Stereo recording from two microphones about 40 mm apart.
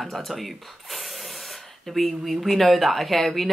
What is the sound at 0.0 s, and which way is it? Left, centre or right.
Speech, centre.